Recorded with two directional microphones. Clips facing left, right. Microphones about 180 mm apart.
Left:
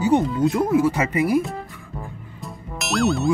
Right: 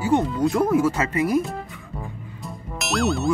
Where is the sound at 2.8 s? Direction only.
Centre (ahead or behind).